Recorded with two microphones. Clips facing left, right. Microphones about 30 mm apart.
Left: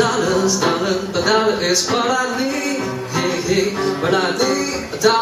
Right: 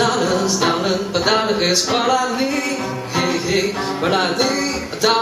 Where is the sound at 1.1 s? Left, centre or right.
Centre.